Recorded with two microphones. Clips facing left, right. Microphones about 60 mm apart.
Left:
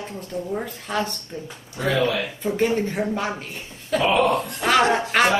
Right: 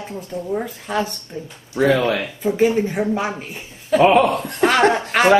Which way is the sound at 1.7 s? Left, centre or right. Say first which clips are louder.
Right 5 dB; right.